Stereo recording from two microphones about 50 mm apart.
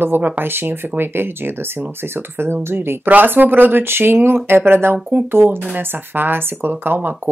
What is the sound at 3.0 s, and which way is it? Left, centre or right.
Speech, right.